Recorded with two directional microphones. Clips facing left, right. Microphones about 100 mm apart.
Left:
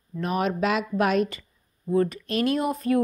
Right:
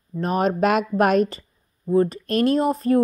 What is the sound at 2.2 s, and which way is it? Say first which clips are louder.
Speech: right 5 dB; 40° right (ahead or behind).